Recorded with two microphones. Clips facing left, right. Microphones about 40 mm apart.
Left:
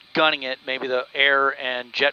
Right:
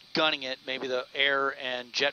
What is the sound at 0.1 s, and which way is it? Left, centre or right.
Speech, left.